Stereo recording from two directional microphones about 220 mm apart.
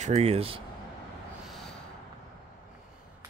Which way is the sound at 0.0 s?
30° right (ahead or behind).